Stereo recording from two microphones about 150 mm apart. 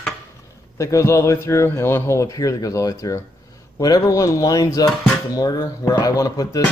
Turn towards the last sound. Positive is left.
turn(degrees=25)  # may be behind; listen again after turning